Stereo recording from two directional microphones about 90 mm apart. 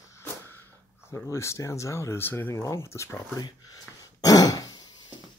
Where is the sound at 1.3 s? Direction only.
35° left (ahead or behind).